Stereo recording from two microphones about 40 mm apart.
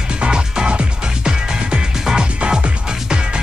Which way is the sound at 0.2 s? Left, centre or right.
Right.